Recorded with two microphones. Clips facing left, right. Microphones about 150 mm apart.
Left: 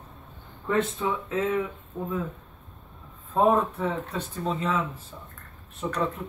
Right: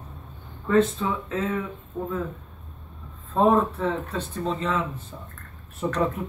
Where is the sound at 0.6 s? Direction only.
20° left (ahead or behind).